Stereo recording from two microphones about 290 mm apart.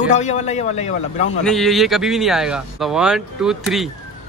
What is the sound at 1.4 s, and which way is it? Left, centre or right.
Speech, centre.